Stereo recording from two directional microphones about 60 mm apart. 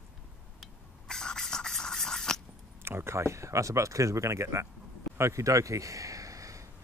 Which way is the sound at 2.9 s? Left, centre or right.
Right.